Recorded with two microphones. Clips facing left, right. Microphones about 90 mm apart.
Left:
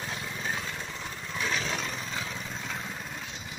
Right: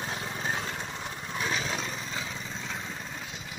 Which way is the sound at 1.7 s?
Centre (ahead or behind).